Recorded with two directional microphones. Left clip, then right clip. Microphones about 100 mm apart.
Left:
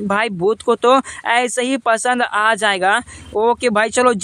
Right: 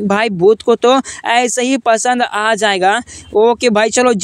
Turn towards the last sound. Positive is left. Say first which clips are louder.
# right 3 dB
turn(degrees=-25)  # may be behind; listen again after turning